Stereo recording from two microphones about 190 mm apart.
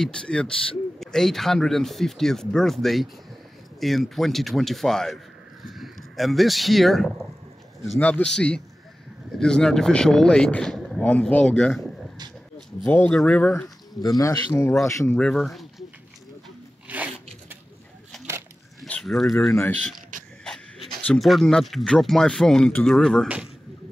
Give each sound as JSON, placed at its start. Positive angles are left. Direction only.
{"t": 0.0, "sound": "speech", "side_deg": 5}
{"t": 12.8, "sound": "speech", "side_deg": 10}
{"t": 16.9, "sound": "a sound", "side_deg": -10}
{"t": 18.8, "sound": "speech", "side_deg": 0}
{"t": 20.4, "sound": "a sound", "side_deg": 0}
{"t": 21.1, "sound": "a man's voice", "side_deg": 0}